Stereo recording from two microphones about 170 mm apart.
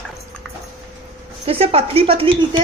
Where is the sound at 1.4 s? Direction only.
35° right (ahead or behind).